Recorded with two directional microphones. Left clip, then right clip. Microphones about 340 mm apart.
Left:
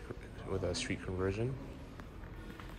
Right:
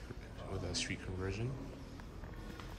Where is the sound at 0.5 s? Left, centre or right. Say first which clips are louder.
Left 4 dB; centre.